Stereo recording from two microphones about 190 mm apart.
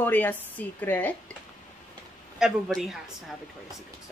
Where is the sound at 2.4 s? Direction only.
5° right (ahead or behind).